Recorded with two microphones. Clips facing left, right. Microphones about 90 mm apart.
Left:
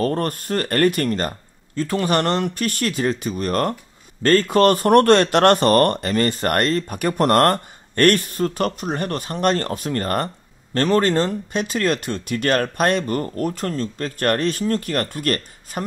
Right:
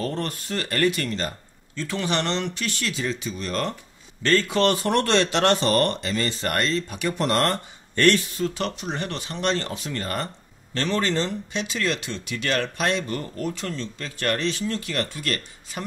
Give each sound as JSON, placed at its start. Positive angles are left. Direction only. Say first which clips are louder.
{"t": 0.0, "sound": "speech", "louder": "left 7 dB", "side_deg": 50}